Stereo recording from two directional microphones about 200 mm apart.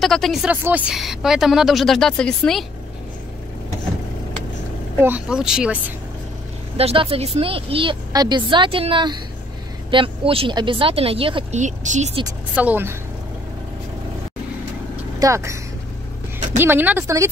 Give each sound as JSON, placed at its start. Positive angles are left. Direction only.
{"t": 0.0, "sound": "speech", "side_deg": 0}
{"t": 4.9, "sound": "speech", "side_deg": -10}
{"t": 6.8, "sound": "a woman's voice", "side_deg": -30}
{"t": 11.6, "sound": "speech", "side_deg": -35}
{"t": 12.5, "sound": "speech", "side_deg": -10}
{"t": 15.1, "sound": "speech", "side_deg": -15}
{"t": 16.5, "sound": "speech", "side_deg": -10}